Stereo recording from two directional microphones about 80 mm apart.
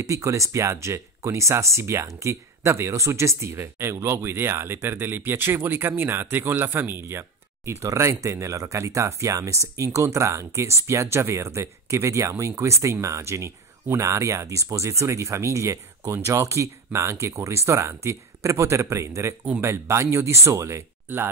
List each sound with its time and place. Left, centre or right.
0.0 s speech: right